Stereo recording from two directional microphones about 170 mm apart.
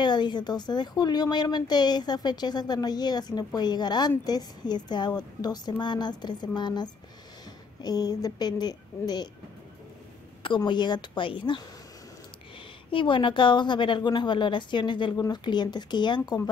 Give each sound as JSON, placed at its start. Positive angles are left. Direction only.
{"t": 0.0, "sound": "speech", "side_deg": 25}
{"t": 10.4, "sound": "speech", "side_deg": 30}
{"t": 12.9, "sound": "speech", "side_deg": 30}